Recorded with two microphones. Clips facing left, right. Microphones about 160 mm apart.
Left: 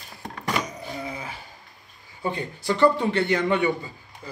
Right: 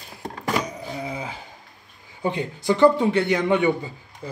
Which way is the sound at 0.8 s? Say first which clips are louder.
Right 3 dB; 15° right (ahead or behind).